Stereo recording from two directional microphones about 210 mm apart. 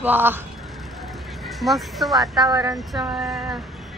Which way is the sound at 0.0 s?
10° right (ahead or behind).